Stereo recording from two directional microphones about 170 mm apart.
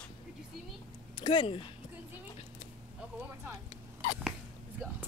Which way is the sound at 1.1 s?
30° left (ahead or behind).